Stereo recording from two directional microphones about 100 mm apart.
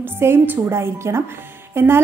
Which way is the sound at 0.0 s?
20° right (ahead or behind).